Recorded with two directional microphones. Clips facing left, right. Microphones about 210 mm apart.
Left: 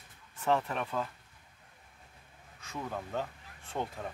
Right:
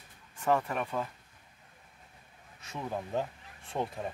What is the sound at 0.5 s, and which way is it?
Speech, 5° right (ahead or behind).